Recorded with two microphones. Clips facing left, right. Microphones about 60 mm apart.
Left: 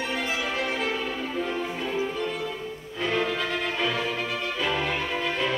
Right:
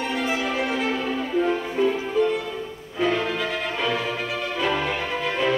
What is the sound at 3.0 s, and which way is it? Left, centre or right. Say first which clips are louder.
Music: right 4 dB; centre.